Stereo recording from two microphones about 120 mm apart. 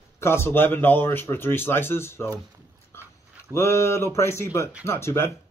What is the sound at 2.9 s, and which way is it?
Dog, 20° left (ahead or behind).